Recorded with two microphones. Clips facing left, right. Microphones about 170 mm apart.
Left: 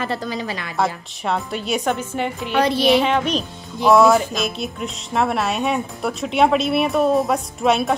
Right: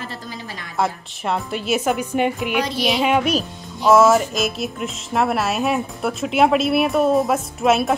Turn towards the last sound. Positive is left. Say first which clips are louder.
# right 1 dB
turn(degrees=0)  # may be behind; listen again after turning